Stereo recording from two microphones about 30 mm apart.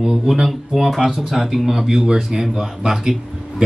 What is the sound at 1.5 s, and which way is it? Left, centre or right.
A man's voice, centre.